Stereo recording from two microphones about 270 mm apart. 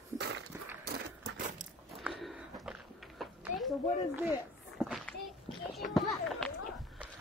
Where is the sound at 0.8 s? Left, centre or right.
Right.